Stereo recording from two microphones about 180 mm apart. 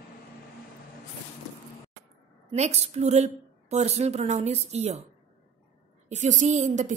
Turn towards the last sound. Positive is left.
turn(degrees=-40)  # may be behind; listen again after turning